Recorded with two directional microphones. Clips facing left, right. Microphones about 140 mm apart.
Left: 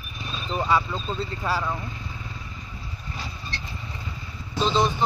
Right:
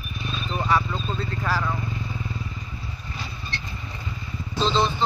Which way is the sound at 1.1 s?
25° left (ahead or behind).